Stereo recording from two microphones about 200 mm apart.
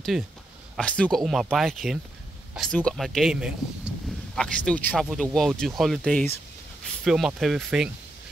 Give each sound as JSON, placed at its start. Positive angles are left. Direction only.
{"t": 0.1, "sound": "speech", "side_deg": 0}